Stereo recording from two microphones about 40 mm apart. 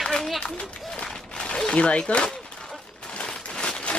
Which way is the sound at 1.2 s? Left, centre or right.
Left.